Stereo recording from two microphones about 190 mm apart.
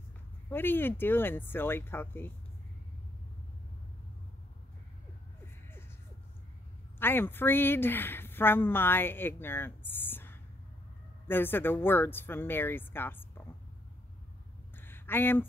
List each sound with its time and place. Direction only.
0.5 s speech: 10° left (ahead or behind)
7.0 s a woman's voice: 10° left (ahead or behind)
14.8 s a sound: 10° left (ahead or behind)